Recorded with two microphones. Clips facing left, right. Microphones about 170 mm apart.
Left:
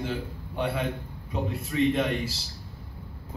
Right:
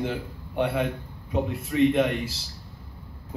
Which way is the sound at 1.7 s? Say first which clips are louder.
Right 4 dB; 60° right (ahead or behind).